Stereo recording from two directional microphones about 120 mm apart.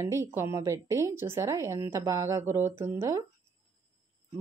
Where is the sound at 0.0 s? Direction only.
25° right (ahead or behind).